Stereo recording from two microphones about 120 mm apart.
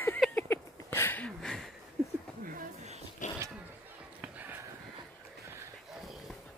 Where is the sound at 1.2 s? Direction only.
5° left (ahead or behind).